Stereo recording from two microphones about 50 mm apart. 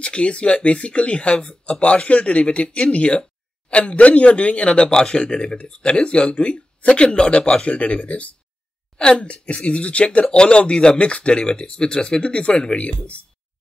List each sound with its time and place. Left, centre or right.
0.0 s speech: left